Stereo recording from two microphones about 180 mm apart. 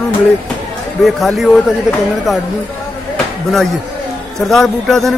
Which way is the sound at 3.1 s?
Centre (ahead or behind).